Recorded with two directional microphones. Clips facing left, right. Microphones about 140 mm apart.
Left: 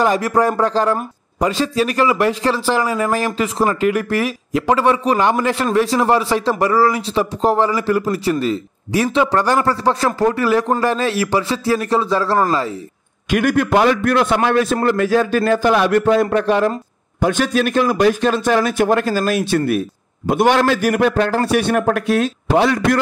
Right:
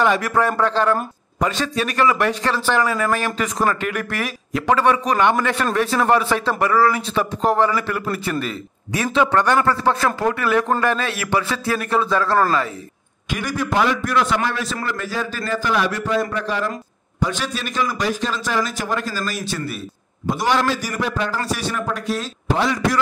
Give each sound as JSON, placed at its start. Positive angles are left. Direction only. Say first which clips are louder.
{"t": 0.0, "sound": "speech", "louder": "left 3 dB", "side_deg": 35}
{"t": 2.8, "sound": "speech", "louder": "left 2 dB", "side_deg": 15}
{"t": 3.3, "sound": "speech", "louder": "left 3 dB", "side_deg": 25}
{"t": 8.0, "sound": "speech", "louder": "left 6 dB", "side_deg": 20}
{"t": 13.3, "sound": "a man's voice", "louder": "left 8 dB", "side_deg": 55}